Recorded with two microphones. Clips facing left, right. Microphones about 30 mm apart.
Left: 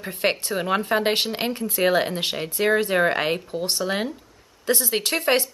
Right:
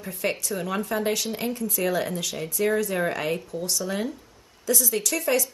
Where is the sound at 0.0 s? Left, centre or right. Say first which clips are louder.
Left 4 dB; left.